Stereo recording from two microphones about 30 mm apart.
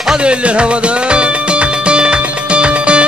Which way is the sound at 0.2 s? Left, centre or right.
Right.